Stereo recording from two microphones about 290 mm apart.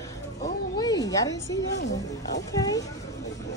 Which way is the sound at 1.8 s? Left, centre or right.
Left.